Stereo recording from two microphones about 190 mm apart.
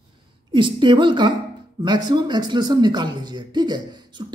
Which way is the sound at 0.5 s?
25° right (ahead or behind).